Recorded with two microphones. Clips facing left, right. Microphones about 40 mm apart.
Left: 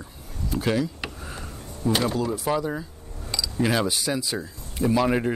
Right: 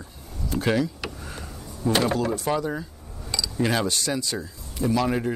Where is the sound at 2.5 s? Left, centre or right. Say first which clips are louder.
Even; centre.